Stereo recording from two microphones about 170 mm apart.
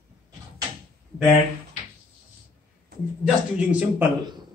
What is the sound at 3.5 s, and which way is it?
Speech, 5° right (ahead or behind).